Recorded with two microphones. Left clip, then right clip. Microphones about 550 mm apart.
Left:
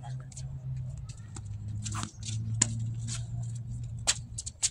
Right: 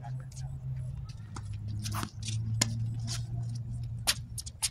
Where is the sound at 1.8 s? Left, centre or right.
Right.